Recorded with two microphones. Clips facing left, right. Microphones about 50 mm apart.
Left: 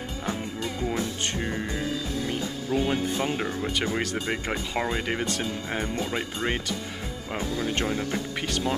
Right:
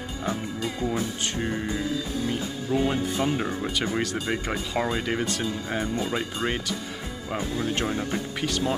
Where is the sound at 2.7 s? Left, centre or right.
Left.